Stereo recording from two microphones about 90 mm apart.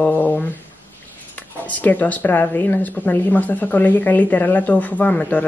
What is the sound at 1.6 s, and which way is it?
A woman's voice, 15° left (ahead or behind).